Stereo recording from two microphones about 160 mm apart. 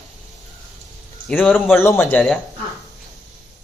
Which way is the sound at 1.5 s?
10° left (ahead or behind).